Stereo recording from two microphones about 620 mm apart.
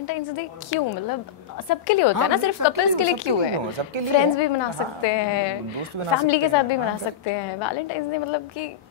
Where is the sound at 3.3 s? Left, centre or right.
Left.